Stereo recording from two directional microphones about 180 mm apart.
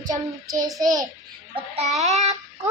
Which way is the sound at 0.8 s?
20° right (ahead or behind).